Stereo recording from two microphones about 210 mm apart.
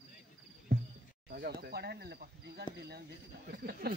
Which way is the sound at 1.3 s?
45° right (ahead or behind).